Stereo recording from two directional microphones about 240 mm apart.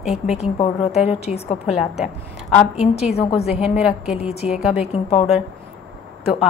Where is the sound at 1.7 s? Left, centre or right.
Centre.